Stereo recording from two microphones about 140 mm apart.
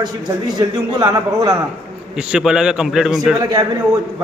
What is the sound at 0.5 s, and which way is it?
A man's voice, 30° right (ahead or behind).